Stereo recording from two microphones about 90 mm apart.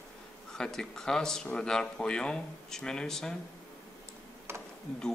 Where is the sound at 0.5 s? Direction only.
5° left (ahead or behind).